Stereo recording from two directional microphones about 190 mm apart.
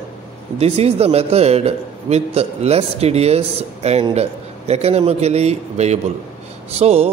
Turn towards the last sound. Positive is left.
turn(degrees=-35)  # may be behind; listen again after turning